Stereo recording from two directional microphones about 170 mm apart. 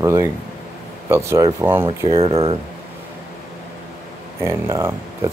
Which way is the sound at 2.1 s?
35° right (ahead or behind).